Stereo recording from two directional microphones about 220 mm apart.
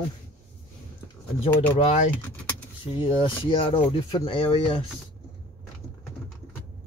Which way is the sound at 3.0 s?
25° left (ahead or behind).